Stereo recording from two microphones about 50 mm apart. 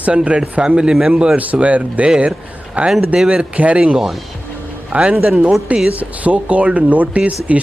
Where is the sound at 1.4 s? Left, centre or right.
Right.